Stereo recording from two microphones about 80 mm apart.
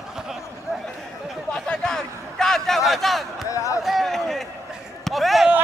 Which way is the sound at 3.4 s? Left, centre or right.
Left.